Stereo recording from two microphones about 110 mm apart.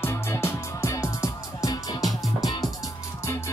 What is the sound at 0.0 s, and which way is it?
Music, 25° left (ahead or behind).